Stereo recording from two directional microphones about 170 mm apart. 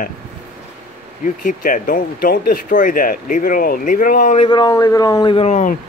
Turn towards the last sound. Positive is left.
turn(degrees=45)  # may be behind; listen again after turning